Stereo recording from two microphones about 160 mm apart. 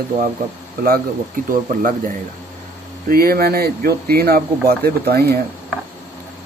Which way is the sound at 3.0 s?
70° right (ahead or behind).